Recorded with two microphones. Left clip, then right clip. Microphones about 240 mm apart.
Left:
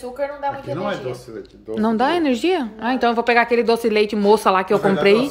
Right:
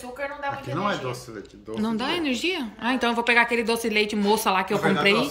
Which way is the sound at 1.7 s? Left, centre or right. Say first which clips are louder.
Left 8 dB; centre.